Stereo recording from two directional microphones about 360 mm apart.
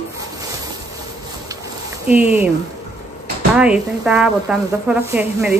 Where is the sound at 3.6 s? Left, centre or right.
Centre.